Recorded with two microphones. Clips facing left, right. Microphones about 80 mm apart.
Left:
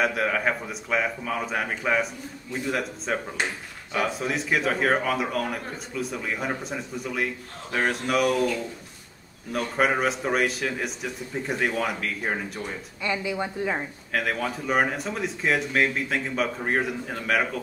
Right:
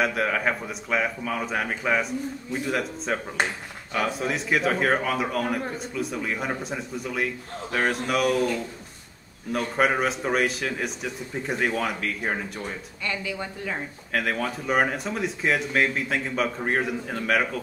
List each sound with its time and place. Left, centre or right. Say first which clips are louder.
0.0 s speech: even; centre
9.5 s speech: right 1 dB; centre
13.0 s a woman's voice: left 3 dB; centre
14.1 s speech: even; centre